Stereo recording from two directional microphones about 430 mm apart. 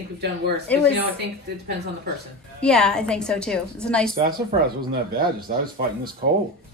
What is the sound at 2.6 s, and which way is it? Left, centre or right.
A woman's voice, centre.